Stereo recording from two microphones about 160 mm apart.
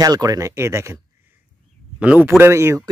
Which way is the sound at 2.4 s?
15° right (ahead or behind).